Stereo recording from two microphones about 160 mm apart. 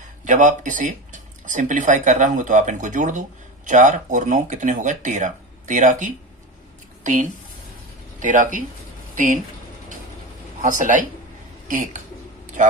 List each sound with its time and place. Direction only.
0.2 s speech: 50° right (ahead or behind)
7.0 s a sound: 55° right (ahead or behind)
8.2 s speech: 50° right (ahead or behind)
10.6 s a man's voice: 55° right (ahead or behind)